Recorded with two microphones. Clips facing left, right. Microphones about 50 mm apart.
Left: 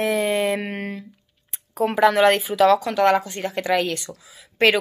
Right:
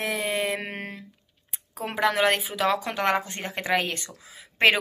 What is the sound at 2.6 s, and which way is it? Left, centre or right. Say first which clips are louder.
Speech: left 7 dB; right.